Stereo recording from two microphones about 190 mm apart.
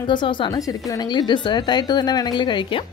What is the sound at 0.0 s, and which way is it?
A woman's voice, 25° left (ahead or behind).